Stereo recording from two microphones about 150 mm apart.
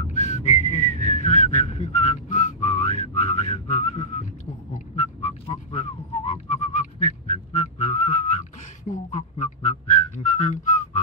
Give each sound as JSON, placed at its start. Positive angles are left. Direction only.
{"t": 0.1, "sound": "whistling", "side_deg": 50}
{"t": 4.7, "sound": "a sound", "side_deg": 45}
{"t": 9.1, "sound": "whistling", "side_deg": 50}